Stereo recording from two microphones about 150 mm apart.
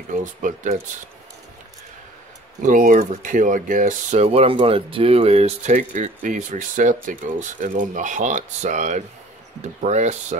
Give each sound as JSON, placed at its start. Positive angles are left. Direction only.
{"t": 0.1, "sound": "speech", "side_deg": -60}
{"t": 2.6, "sound": "speech", "side_deg": -65}